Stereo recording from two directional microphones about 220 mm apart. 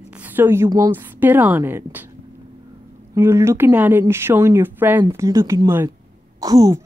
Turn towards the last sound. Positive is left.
turn(degrees=-15)  # may be behind; listen again after turning